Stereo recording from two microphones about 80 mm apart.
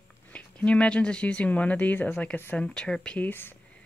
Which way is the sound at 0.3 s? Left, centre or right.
Centre.